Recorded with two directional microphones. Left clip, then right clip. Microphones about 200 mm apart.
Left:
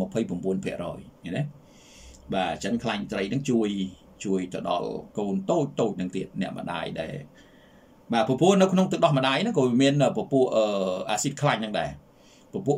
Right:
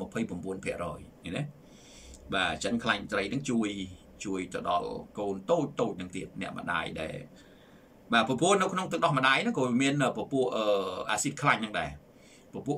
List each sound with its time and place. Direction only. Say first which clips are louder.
0.1 s speech: left 7 dB; 15° left (ahead or behind)
2.2 s speech: left 2 dB; 10° left (ahead or behind)
8.1 s speech: left 3 dB; 10° left (ahead or behind)